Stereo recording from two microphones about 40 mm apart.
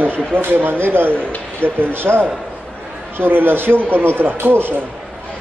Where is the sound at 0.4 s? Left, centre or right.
Right.